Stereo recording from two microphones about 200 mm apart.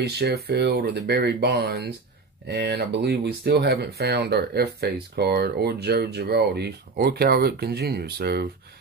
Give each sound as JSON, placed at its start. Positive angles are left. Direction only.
{"t": 0.0, "sound": "speech", "side_deg": -55}